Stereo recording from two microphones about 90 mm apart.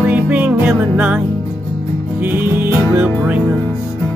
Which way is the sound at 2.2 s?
20° right (ahead or behind).